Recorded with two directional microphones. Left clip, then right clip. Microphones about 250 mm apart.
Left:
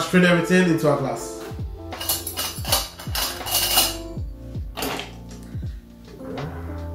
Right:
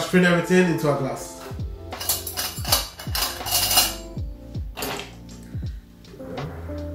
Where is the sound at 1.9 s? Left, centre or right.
Centre.